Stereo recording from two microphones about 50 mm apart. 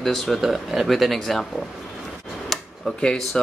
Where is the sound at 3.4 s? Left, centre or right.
Centre.